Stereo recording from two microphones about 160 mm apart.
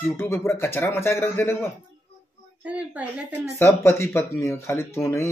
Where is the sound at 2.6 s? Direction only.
10° right (ahead or behind).